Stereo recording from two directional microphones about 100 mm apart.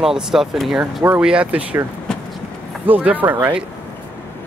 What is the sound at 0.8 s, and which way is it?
Speech, 25° right (ahead or behind).